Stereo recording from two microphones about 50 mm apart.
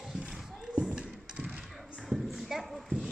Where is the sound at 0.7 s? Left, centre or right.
Centre.